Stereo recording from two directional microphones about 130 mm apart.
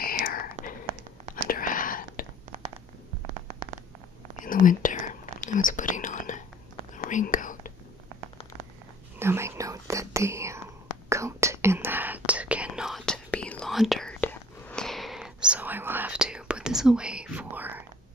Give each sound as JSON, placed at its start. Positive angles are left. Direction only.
{"t": 0.1, "sound": "whispering", "side_deg": 90}
{"t": 4.4, "sound": "whispering", "side_deg": 90}
{"t": 9.2, "sound": "whispering", "side_deg": -20}
{"t": 14.2, "sound": "whispering", "side_deg": 15}
{"t": 14.9, "sound": "whispering", "side_deg": 0}